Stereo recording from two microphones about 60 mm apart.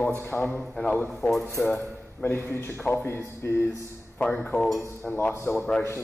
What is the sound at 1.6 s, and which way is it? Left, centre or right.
Speech, left.